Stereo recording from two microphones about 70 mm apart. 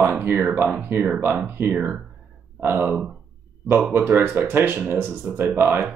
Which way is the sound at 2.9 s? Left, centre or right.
Centre.